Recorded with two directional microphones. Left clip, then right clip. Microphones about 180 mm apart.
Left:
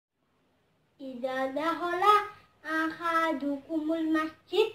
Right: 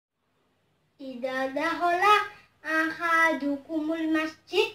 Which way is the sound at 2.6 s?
15° right (ahead or behind).